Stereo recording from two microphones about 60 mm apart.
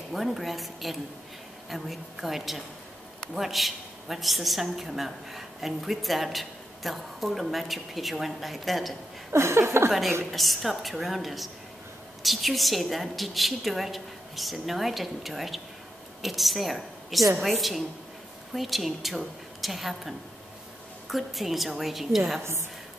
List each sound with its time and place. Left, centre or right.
0.1 s a woman's voice: centre
9.3 s speech: right
9.8 s a woman's voice: centre
22.4 s speech: right